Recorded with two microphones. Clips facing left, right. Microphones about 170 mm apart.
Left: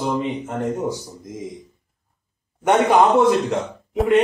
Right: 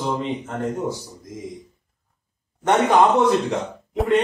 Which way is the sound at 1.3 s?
20° left (ahead or behind).